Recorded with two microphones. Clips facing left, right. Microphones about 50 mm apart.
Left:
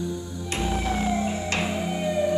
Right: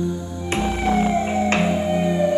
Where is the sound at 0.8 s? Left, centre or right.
Right.